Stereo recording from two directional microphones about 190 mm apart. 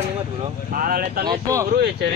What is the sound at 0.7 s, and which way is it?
Speech, 50° right (ahead or behind).